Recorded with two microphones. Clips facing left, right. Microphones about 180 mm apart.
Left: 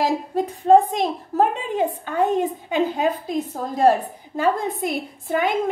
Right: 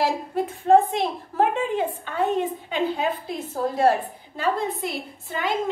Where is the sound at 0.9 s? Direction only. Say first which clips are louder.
Left 3 dB; 40° left (ahead or behind).